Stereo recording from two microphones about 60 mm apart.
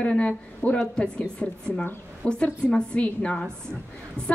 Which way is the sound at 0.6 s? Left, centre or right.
Left.